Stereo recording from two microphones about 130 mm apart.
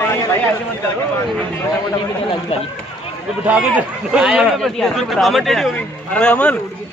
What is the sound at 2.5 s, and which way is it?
Speech, 55° left (ahead or behind).